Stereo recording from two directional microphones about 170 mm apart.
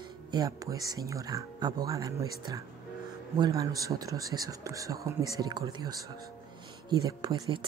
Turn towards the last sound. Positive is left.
turn(degrees=-20)  # may be behind; listen again after turning